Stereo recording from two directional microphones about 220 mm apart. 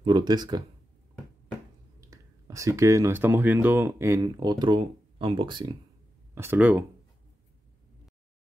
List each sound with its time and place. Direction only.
0.0 s speech: 20° right (ahead or behind)
2.0 s speech: 15° right (ahead or behind)
6.3 s speech: 10° right (ahead or behind)